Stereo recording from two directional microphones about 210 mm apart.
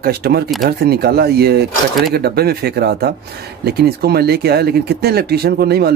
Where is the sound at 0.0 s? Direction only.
50° right (ahead or behind).